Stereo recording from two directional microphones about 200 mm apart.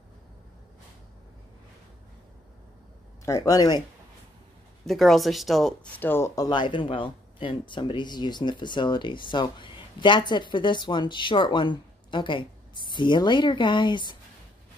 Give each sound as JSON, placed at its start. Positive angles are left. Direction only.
{"t": 3.3, "sound": "speech", "side_deg": 15}
{"t": 4.8, "sound": "speech", "side_deg": 0}